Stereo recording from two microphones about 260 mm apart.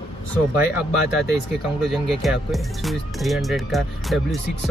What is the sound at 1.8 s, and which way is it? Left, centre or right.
Speech, centre.